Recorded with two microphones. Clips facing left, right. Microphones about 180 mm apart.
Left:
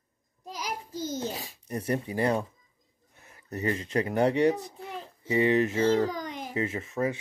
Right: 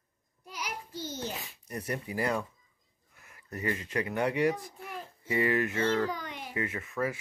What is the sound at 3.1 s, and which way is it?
A child's voice, 25° left (ahead or behind).